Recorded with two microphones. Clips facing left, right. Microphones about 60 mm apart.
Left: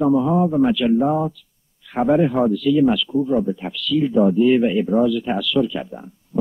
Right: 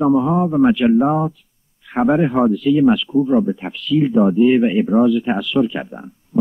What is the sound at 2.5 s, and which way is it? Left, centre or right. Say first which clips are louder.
Speech: right 2 dB; right.